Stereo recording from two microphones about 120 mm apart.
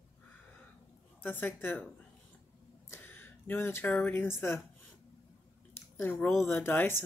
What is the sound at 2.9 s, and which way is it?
Speech, 20° left (ahead or behind).